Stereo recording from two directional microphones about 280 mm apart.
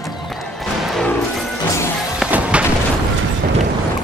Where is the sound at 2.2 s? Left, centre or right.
Centre.